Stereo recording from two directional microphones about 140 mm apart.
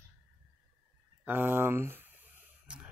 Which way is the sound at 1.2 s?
15° right (ahead or behind).